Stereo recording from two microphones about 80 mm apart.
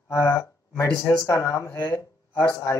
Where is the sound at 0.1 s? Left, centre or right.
Left.